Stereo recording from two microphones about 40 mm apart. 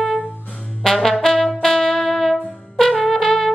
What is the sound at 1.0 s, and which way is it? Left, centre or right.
Brass instrument, centre.